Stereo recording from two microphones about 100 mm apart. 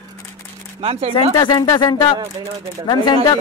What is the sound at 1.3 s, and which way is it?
Speech, 50° left (ahead or behind).